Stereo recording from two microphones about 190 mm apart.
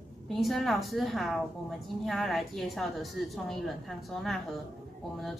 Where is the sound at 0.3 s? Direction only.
Centre (ahead or behind).